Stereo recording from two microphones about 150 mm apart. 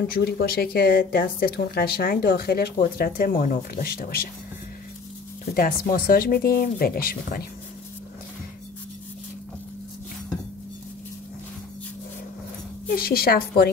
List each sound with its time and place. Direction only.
0.0 s speech: 90° left
5.4 s speech: 75° left (ahead or behind)
12.9 s speech: 80° left